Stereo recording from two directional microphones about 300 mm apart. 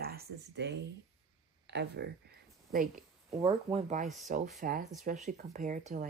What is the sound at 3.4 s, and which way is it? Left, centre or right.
Speech, centre.